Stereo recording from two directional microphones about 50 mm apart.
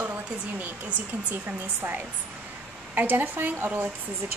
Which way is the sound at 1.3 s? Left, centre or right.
Right.